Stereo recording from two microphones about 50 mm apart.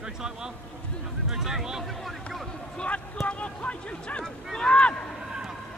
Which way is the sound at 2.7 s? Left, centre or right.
Left.